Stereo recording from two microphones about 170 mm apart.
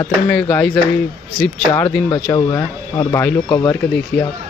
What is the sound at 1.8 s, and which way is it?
Speech, 10° left (ahead or behind).